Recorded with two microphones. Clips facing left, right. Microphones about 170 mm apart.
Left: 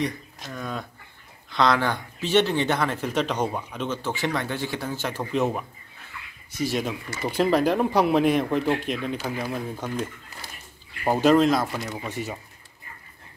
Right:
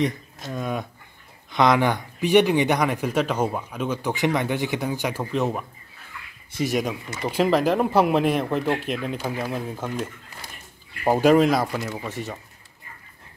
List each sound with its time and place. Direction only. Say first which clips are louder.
0.5 s speech: right 5 dB; 20° right (ahead or behind)
5.3 s speech: left 2 dB; centre (ahead or behind)
6.5 s speech: right 2 dB; 20° right (ahead or behind)
7.2 s speech: right 1 dB; 5° right (ahead or behind)
11.1 s speech: right 2 dB; 10° right (ahead or behind)